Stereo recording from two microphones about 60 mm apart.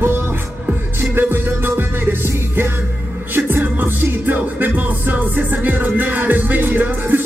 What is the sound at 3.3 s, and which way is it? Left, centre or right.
Music, right.